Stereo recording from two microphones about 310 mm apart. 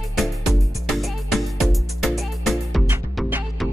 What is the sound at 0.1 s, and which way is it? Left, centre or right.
Music, centre.